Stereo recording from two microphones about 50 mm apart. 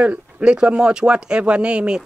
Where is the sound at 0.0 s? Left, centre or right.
Right.